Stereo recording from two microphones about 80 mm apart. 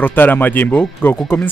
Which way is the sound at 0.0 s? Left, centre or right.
Left.